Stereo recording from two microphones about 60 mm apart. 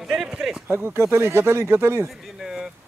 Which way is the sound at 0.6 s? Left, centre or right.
Right.